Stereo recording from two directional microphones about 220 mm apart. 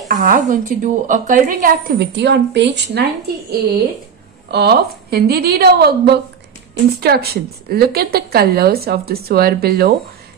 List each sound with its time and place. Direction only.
0.1 s a woman's voice: 35° right (ahead or behind)